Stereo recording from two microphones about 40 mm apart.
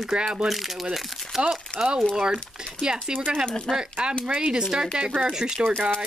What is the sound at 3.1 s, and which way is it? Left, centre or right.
Speech, right.